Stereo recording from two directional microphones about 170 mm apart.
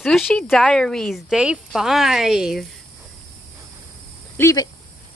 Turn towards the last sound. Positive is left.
turn(degrees=20)  # may be behind; listen again after turning